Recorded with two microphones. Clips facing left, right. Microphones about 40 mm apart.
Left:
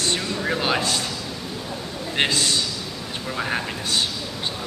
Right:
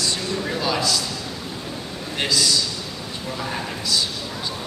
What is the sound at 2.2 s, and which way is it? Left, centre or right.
A man's voice, left.